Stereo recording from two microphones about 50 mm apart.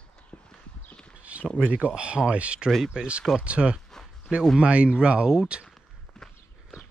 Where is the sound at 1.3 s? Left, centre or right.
Right.